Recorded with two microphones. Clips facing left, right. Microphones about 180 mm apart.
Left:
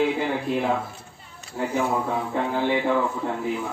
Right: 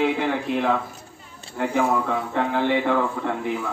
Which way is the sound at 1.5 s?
60° right (ahead or behind).